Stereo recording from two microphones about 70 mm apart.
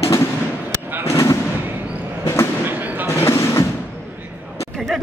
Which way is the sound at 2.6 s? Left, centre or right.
Right.